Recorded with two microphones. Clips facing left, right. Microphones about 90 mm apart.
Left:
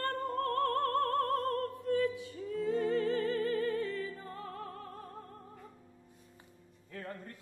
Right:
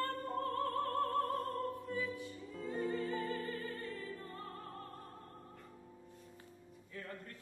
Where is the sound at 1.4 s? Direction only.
65° left (ahead or behind).